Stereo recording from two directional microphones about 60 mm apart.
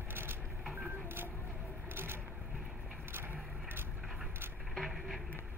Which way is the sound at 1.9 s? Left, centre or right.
Right.